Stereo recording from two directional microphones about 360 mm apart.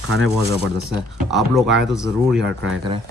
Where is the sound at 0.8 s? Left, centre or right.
Centre.